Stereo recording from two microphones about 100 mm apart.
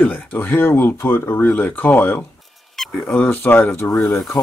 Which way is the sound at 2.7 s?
5° left (ahead or behind).